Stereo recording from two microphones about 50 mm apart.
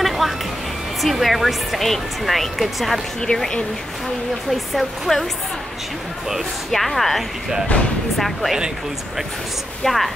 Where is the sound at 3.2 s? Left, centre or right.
Centre.